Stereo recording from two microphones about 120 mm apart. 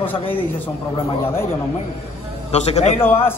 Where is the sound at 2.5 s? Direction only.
65° left (ahead or behind).